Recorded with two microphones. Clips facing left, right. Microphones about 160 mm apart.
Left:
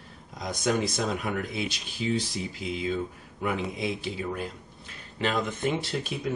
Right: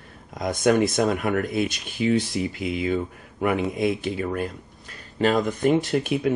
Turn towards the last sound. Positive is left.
turn(degrees=-60)  # may be behind; listen again after turning